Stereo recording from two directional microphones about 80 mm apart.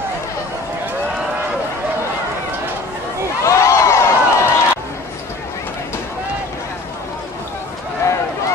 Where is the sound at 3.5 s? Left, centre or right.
Left.